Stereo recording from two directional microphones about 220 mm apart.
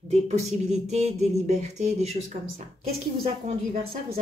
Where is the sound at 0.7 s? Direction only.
30° right (ahead or behind).